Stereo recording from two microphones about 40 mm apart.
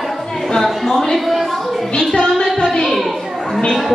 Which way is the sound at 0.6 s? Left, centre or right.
Centre.